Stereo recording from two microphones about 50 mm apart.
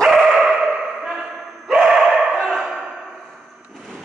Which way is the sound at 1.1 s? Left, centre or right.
Centre.